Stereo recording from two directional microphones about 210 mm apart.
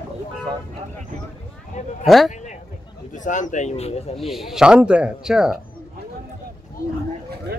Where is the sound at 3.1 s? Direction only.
35° left (ahead or behind).